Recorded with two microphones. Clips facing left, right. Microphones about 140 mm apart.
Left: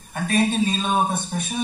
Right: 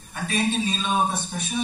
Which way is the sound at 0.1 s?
50° left (ahead or behind).